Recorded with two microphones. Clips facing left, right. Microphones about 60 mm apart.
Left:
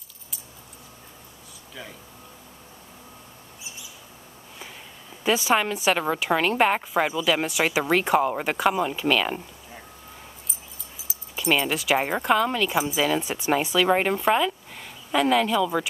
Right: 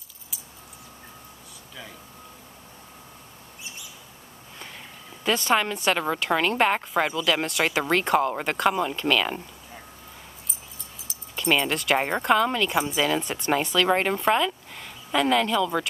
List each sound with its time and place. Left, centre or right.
3.6 s mouse: right
5.2 s a woman's voice: centre
11.1 s speech: centre